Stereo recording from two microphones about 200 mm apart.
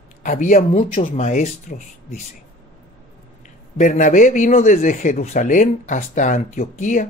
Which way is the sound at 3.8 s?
40° left (ahead or behind).